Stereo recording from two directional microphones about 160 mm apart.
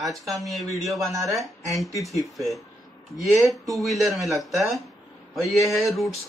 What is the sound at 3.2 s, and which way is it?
Speech, centre (ahead or behind).